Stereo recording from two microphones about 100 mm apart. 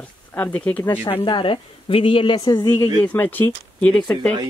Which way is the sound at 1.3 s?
55° left (ahead or behind).